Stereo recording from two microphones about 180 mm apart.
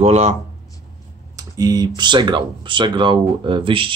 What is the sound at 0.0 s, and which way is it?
Speech, 40° right (ahead or behind).